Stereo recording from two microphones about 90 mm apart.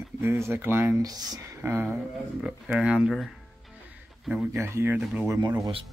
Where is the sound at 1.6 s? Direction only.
25° right (ahead or behind).